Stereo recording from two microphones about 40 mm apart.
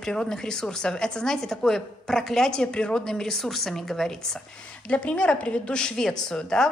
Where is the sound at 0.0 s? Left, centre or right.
Centre.